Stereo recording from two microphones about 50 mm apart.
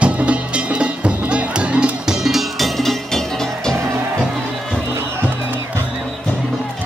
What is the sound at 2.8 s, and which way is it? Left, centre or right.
Music, centre.